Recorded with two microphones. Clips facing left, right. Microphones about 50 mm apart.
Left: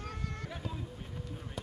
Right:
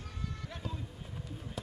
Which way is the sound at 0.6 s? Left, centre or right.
Centre.